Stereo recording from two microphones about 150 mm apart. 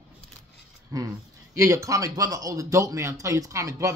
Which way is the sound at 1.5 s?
20° right (ahead or behind).